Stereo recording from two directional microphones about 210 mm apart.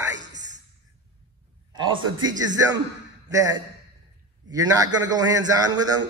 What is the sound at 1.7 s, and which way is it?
A man's voice, 20° right (ahead or behind).